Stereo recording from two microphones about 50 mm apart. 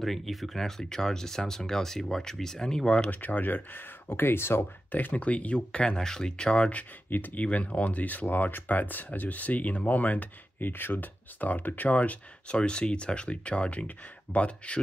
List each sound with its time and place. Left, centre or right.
0.0 s speech: centre
3.1 s speech: left
4.9 s speech: left; by 6.7 s centre
6.7 s speech: left
7.4 s speech: left
12.5 s speech: centre